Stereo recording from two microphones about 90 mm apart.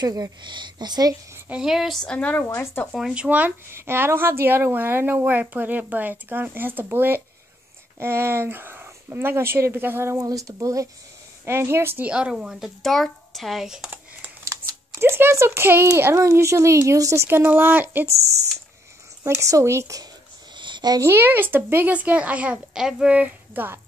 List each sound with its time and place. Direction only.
0.0 s speech: 45° right (ahead or behind)
1.5 s speech: 5° right (ahead or behind)
2.0 s speech: 15° left (ahead or behind)
3.2 s speech: 20° right (ahead or behind)
10.1 s speech: 40° right (ahead or behind)
12.1 s speech: 10° right (ahead or behind)
14.6 s speech: 25° right (ahead or behind)
19.2 s speech: 35° right (ahead or behind)
20.5 s a sound: 60° right (ahead or behind)
21.0 s speech: 25° right (ahead or behind)